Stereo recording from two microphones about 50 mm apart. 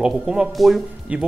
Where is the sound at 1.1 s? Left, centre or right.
Right.